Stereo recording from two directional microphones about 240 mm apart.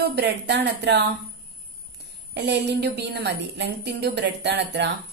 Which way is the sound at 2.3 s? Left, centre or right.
Right.